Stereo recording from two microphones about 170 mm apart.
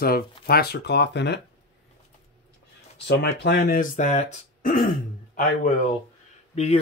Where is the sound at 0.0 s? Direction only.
65° left (ahead or behind); by 1.4 s 90° left.